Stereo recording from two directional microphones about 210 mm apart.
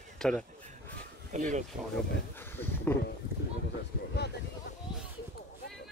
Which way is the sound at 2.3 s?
10° left (ahead or behind).